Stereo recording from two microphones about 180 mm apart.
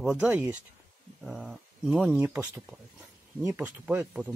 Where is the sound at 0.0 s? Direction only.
5° right (ahead or behind).